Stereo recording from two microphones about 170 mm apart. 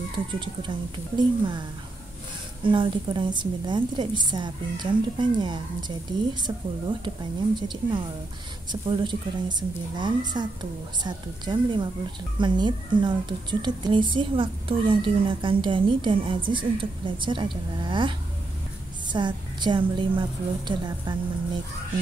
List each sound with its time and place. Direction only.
0.3 s a woman's voice: 30° right (ahead or behind)